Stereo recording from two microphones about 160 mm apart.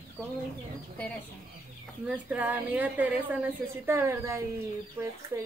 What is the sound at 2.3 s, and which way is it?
A woman's voice, 10° right (ahead or behind).